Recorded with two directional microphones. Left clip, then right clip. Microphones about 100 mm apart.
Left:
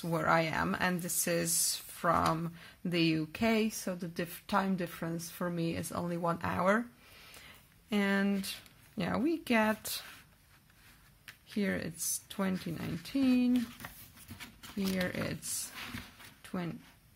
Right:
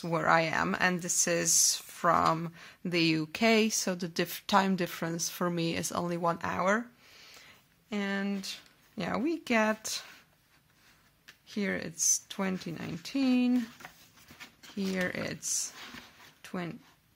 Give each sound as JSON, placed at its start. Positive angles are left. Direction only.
{"t": 0.0, "sound": "speech", "side_deg": -35}
{"t": 6.3, "sound": "speech", "side_deg": -25}
{"t": 7.3, "sound": "a sound", "side_deg": 0}
{"t": 8.9, "sound": "speech", "side_deg": -25}
{"t": 11.4, "sound": "speech", "side_deg": -30}
{"t": 14.7, "sound": "speech", "side_deg": -30}
{"t": 16.4, "sound": "a sound", "side_deg": -30}